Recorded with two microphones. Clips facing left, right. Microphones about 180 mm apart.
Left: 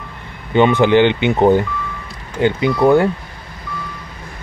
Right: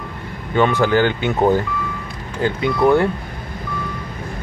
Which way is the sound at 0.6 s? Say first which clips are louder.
Left 4 dB; 20° left (ahead or behind).